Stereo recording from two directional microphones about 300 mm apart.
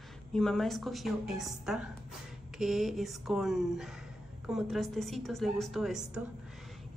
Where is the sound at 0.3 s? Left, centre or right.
Centre.